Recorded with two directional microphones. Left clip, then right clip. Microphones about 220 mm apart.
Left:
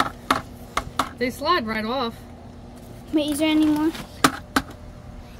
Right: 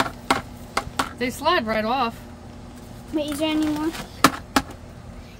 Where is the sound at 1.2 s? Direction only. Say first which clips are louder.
Right 1 dB; 20° right (ahead or behind).